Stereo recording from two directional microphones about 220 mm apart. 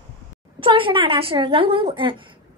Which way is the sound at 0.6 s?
25° right (ahead or behind).